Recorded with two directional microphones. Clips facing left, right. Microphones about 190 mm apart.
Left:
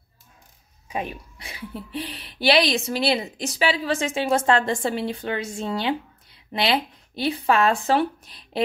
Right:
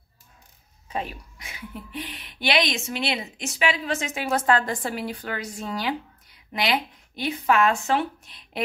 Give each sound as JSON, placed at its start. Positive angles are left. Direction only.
{"t": 0.8, "sound": "speech", "side_deg": 15}
{"t": 1.4, "sound": "a woman's voice", "side_deg": 30}